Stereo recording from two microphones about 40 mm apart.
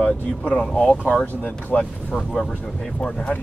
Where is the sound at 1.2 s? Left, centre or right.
Left.